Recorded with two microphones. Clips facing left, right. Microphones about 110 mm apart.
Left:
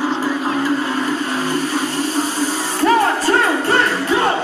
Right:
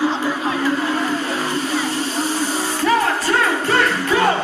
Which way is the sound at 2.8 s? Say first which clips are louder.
Left 4 dB; 35° left (ahead or behind).